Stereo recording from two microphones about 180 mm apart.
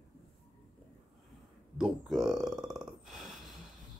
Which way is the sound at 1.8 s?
Centre (ahead or behind).